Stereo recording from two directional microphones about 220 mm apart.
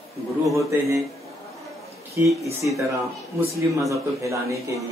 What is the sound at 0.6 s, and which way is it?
Speech, 15° right (ahead or behind).